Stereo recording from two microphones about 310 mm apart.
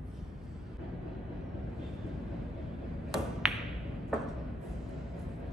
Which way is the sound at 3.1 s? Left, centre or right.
Centre.